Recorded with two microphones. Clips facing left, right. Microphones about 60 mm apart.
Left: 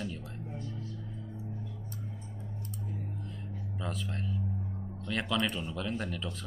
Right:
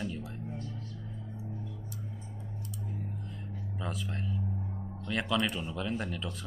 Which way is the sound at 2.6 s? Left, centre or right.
Left.